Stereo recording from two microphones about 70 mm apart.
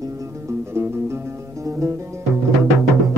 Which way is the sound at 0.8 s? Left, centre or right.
Right.